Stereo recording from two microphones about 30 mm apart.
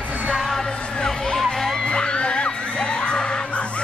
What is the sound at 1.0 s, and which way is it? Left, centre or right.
Music, centre.